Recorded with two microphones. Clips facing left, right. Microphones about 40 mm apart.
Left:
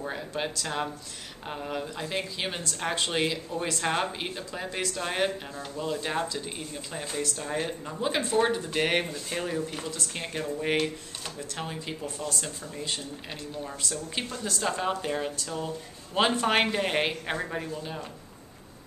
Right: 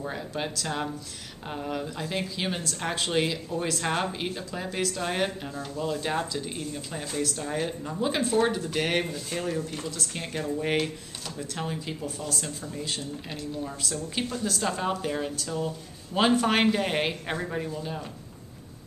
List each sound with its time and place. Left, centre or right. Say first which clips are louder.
0.0 s speech: even; centre
14.1 s speech: right 5 dB; centre